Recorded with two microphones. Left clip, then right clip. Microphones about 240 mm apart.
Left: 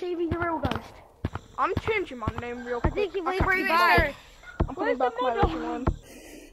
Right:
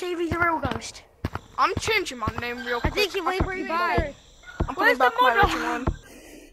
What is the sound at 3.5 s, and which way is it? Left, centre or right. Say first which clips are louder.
Music: left 5 dB; left.